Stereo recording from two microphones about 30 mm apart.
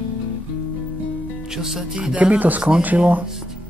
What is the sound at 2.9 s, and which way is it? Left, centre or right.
Speech, right.